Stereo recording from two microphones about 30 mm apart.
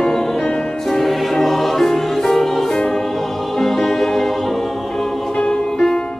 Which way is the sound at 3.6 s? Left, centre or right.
Centre.